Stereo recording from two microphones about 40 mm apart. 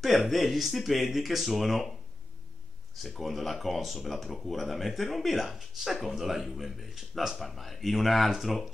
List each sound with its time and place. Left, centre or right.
0.0 s speech: centre
3.0 s speech: centre